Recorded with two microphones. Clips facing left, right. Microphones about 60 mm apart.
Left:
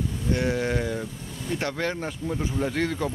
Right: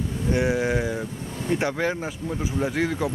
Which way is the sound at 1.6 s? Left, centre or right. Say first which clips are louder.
Right 3 dB; centre.